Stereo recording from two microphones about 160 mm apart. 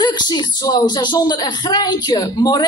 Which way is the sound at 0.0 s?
25° left (ahead or behind).